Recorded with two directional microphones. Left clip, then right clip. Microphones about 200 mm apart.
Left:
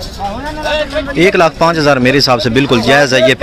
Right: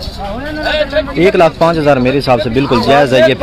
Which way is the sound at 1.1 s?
5° left (ahead or behind).